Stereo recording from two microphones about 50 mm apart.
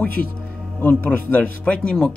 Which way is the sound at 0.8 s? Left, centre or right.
Left.